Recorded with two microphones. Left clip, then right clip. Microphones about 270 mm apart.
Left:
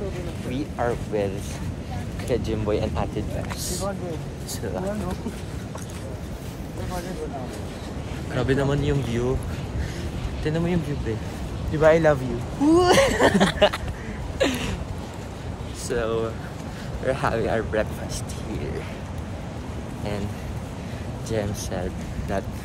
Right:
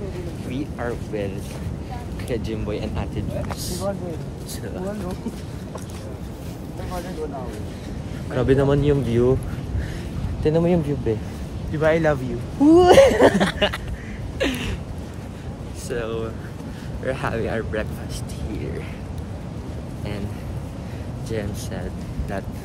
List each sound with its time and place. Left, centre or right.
0.5 s speech: centre
8.4 s speech: right
10.4 s speech: right
11.7 s a man's voice: centre
12.6 s speech: right
13.4 s a man's voice: centre
14.4 s a sound: centre
15.9 s speech: centre
21.3 s speech: centre